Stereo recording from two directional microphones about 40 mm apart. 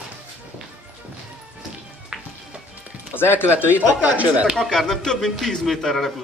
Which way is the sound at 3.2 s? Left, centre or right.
Left.